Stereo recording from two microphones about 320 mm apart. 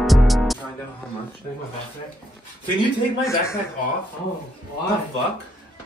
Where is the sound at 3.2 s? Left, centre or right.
Centre.